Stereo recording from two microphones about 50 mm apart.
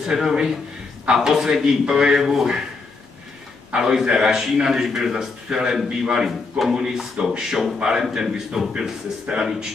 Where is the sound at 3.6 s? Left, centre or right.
Centre.